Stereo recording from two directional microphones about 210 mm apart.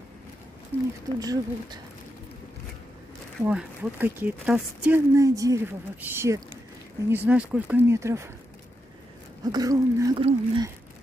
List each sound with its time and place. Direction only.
0.7 s speech: 25° left (ahead or behind)
1.2 s speech: 20° right (ahead or behind)
3.4 s speech: 10° right (ahead or behind)
9.4 s speech: 20° right (ahead or behind)